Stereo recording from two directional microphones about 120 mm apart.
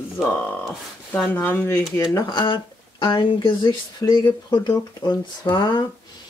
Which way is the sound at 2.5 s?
45° left (ahead or behind).